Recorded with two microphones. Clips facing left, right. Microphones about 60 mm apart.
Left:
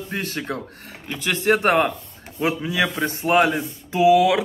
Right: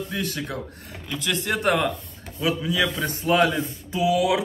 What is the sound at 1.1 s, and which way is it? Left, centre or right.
A man's voice, left.